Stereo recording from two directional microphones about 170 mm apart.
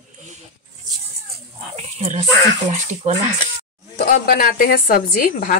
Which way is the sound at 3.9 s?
55° left (ahead or behind).